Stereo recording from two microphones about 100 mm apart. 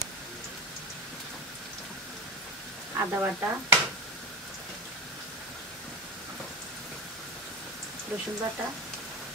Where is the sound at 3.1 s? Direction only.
25° right (ahead or behind).